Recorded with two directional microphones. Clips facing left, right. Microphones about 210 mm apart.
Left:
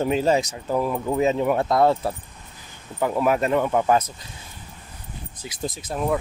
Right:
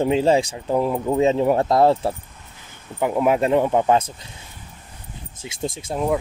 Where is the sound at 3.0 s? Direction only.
20° right (ahead or behind).